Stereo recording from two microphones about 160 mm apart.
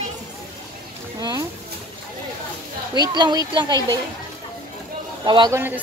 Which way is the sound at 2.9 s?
25° right (ahead or behind).